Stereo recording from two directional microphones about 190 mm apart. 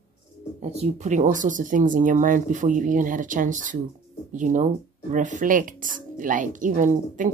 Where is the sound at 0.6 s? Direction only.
35° right (ahead or behind).